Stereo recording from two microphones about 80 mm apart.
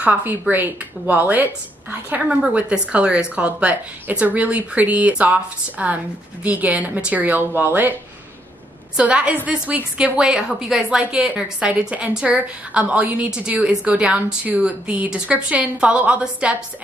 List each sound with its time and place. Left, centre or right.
0.0 s a woman's voice: right
2.2 s a woman's voice: centre
8.9 s a woman's voice: centre